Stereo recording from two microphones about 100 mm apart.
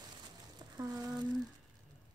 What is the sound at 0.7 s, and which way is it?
Speech, 35° right (ahead or behind).